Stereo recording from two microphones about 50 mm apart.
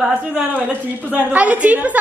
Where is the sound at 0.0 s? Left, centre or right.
Right.